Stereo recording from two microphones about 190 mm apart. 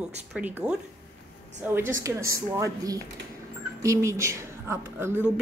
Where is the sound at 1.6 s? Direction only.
10° right (ahead or behind).